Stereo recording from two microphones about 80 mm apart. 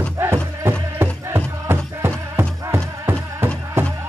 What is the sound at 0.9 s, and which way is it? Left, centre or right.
Music, right.